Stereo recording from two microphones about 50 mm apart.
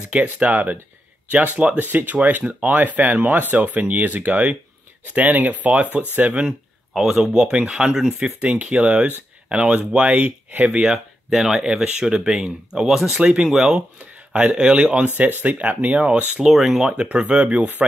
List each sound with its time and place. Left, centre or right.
0.1 s speech: right
1.8 s speech: right
7.2 s speech: centre
10.8 s speech: centre
13.5 s speech: centre
14.3 s speech: right
15.4 s speech: right
16.3 s speech: centre
16.8 s speech: centre